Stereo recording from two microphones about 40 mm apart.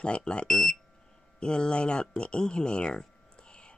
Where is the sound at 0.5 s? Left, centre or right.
Centre.